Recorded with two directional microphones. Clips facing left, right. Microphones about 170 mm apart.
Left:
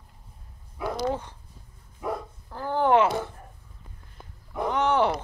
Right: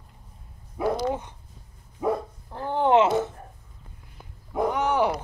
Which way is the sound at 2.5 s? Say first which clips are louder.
Right 1 dB; 25° right (ahead or behind).